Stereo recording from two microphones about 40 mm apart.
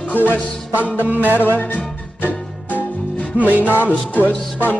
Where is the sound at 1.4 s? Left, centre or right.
Left.